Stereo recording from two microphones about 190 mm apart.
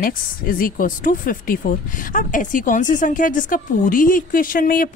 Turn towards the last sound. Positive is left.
turn(degrees=45)  # may be behind; listen again after turning